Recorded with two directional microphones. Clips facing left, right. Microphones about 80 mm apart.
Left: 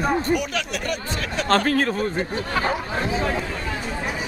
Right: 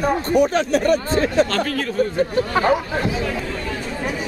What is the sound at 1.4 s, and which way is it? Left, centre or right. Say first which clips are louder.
Speech: left 3 dB; left.